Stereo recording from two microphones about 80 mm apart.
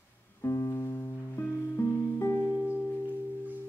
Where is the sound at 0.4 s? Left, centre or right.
Left.